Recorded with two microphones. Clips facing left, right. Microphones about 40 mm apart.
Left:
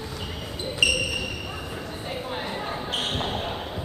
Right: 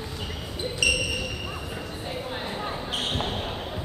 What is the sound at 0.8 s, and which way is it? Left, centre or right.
Basketball bounce, centre.